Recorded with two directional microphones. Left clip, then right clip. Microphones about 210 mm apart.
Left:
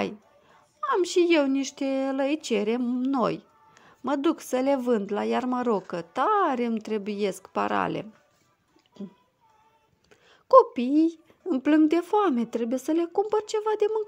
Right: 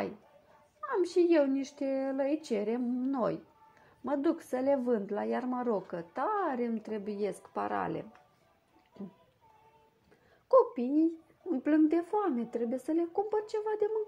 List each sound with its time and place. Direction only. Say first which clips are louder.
0.8 s a woman's voice: left 6 dB; 20° left (ahead or behind)
10.5 s a woman's voice: left 8 dB; 20° left (ahead or behind)